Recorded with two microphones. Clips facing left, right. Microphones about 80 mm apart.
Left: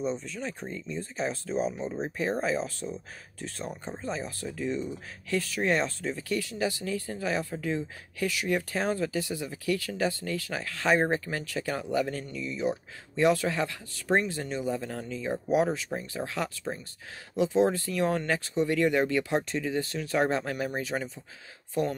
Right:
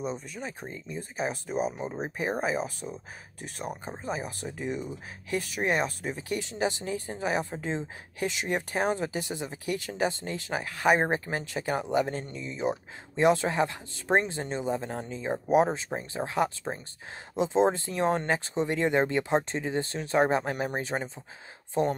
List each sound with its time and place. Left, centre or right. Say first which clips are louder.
0.0 s speech: left 2 dB; centre; by 21.9 s right